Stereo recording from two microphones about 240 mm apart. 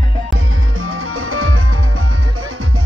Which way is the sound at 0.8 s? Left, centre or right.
Right.